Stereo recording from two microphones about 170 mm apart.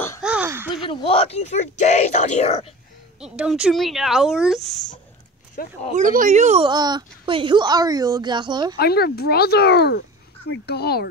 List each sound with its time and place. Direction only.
0.2 s a sound: 10° right (ahead or behind)
0.8 s speech: 35° left (ahead or behind)
3.2 s speech: 5° right (ahead or behind)
5.6 s speech: 55° left (ahead or behind)
5.9 s speech: 50° right (ahead or behind)
6.6 s speech: 25° right (ahead or behind)
8.7 s speech: 70° left (ahead or behind)